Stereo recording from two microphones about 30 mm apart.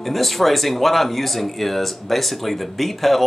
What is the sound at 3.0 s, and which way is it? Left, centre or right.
Speech, centre.